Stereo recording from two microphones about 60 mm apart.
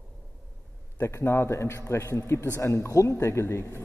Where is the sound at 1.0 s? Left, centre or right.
Left.